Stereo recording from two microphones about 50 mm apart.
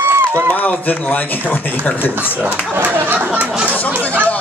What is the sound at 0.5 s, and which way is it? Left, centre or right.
Speech, left.